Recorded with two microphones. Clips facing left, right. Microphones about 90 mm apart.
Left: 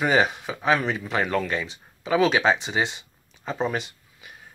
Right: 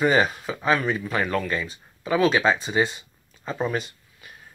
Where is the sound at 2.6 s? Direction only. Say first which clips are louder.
Right 3 dB; 20° left (ahead or behind).